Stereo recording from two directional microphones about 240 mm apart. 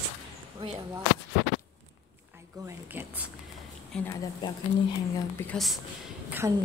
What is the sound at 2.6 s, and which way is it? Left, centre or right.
Speech, centre.